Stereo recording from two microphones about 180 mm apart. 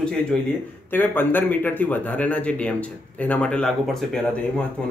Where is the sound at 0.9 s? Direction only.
10° left (ahead or behind).